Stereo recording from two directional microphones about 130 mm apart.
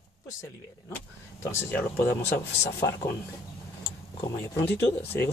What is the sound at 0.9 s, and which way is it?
Speech, 20° left (ahead or behind).